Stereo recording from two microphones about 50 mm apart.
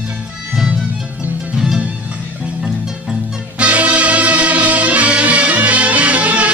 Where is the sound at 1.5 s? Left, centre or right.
Centre.